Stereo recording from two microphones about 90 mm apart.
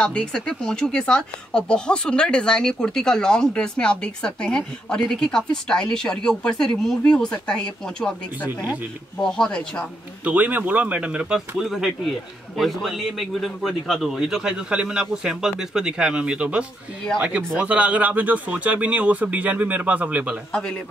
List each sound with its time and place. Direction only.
0.0 s speech: 10° left (ahead or behind)
9.2 s speech: 5° left (ahead or behind)
10.2 s a man's voice: 15° right (ahead or behind)